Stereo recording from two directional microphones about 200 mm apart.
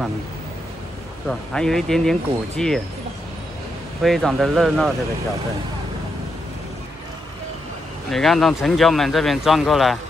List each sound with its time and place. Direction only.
1.2 s speech: 5° left (ahead or behind)
4.0 s speech: centre (ahead or behind)
8.1 s speech: centre (ahead or behind)